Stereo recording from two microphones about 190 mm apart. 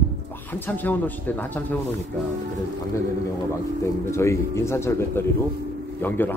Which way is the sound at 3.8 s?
15° left (ahead or behind).